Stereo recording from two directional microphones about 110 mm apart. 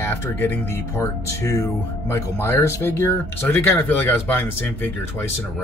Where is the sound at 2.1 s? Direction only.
25° left (ahead or behind).